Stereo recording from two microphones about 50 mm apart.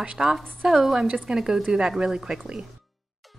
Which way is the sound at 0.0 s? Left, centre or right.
Centre.